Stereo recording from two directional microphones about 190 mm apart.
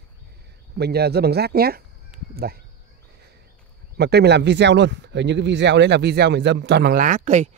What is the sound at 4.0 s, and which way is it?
Speech, 60° right (ahead or behind).